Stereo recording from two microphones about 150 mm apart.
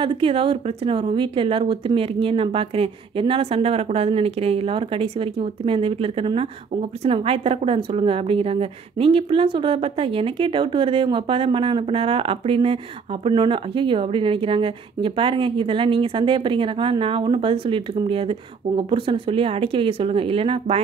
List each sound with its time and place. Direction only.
0.0 s a woman's voice: 35° right (ahead or behind)